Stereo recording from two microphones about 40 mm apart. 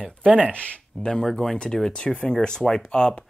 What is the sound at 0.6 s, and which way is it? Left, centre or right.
Speech, left.